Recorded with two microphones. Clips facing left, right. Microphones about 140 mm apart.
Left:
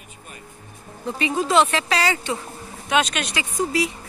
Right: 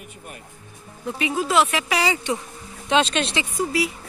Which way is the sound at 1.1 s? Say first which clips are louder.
Left 2 dB; 5° right (ahead or behind).